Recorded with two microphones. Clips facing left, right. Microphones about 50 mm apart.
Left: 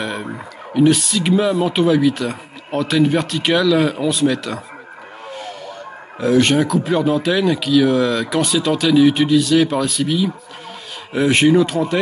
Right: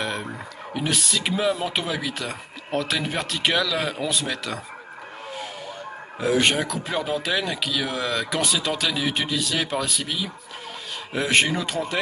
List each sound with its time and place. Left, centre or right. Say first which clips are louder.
0.0 s speech: left 4 dB; centre
6.1 s speech: left 6 dB; centre